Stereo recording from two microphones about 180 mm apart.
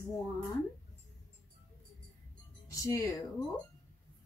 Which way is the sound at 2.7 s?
20° left (ahead or behind).